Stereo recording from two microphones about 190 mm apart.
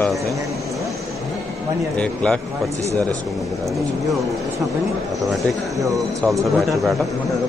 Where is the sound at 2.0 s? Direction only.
5° left (ahead or behind).